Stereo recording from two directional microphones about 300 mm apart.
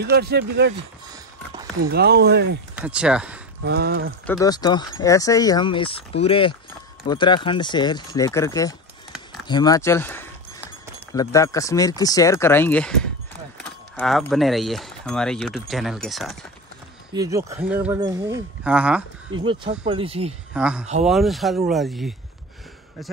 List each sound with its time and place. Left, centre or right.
0.0 s speech: right
1.8 s speech: right
2.7 s speech: centre
3.6 s speech: right
4.3 s speech: centre
13.9 s speech: centre
17.1 s speech: centre
19.3 s speech: centre
20.5 s speech: centre